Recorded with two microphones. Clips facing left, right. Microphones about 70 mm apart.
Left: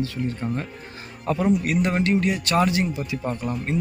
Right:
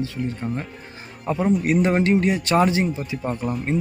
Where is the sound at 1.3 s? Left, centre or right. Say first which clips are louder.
Right 1 dB; right.